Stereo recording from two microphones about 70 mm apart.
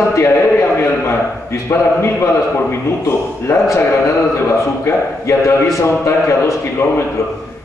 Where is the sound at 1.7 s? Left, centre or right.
Left.